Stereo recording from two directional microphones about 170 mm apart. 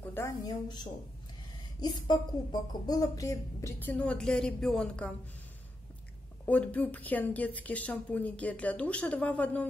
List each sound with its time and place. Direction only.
0.0 s a woman's voice: 15° left (ahead or behind)
6.4 s speech: 10° left (ahead or behind)